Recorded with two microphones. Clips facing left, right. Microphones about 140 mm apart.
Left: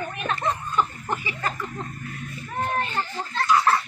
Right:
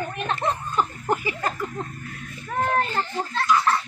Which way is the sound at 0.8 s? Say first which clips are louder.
Right 3 dB; 40° right (ahead or behind).